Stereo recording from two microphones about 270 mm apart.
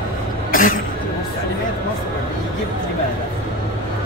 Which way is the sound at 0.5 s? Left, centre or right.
Left.